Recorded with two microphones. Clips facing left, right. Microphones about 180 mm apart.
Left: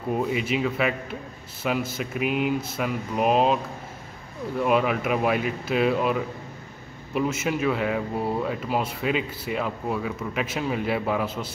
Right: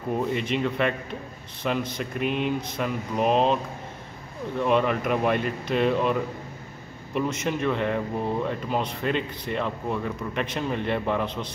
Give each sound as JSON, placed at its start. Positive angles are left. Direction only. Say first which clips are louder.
{"t": 0.1, "sound": "speech", "louder": "left 1 dB", "side_deg": 5}
{"t": 4.6, "sound": "speech", "louder": "even", "side_deg": 5}